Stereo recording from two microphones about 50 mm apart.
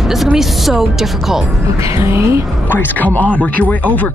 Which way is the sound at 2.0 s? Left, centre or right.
Right.